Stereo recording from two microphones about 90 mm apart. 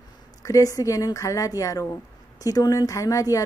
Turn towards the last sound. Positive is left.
turn(degrees=40)  # may be behind; listen again after turning